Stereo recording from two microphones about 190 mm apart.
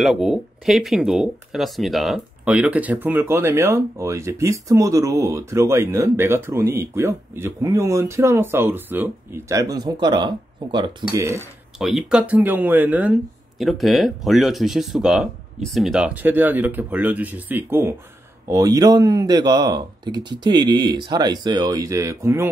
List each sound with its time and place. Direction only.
0.0 s speech: centre (ahead or behind); by 11.3 s 20° right (ahead or behind)
11.8 s a man's voice: 5° right (ahead or behind)